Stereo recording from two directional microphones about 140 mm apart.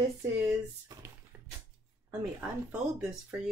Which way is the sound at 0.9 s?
25° right (ahead or behind).